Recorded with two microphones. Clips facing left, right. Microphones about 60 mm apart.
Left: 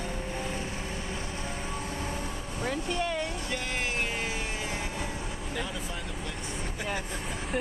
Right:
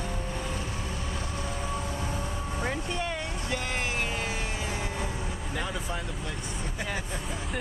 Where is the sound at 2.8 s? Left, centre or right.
Centre.